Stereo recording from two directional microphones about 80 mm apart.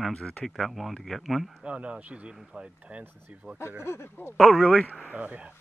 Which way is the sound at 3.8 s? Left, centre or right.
Left.